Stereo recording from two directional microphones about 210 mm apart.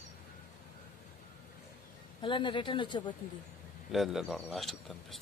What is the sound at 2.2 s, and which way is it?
Speech, 25° left (ahead or behind).